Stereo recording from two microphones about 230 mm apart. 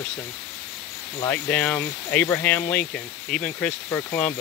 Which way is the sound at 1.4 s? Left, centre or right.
Centre.